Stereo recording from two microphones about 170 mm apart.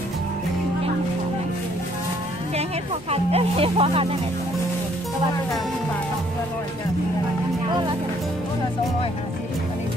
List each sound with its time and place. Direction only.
3.1 s speech: 35° right (ahead or behind)